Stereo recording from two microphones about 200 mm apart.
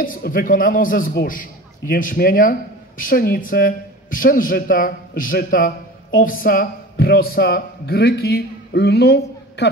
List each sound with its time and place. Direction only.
0.0 s a man's voice: 45° left (ahead or behind)